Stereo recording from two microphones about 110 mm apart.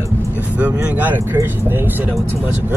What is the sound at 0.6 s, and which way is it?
Speech, 15° right (ahead or behind).